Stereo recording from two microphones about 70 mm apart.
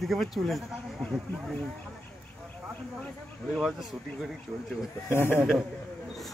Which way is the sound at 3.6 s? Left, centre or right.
Centre.